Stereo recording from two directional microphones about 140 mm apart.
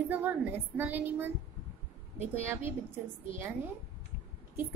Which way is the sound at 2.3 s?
20° right (ahead or behind).